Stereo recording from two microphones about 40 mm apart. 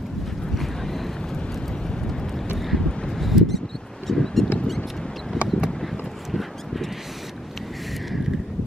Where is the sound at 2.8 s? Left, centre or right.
Centre.